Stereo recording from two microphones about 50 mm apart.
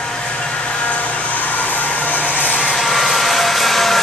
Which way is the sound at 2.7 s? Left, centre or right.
Centre.